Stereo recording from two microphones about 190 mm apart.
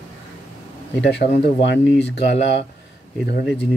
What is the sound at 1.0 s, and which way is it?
Speech, 65° left (ahead or behind).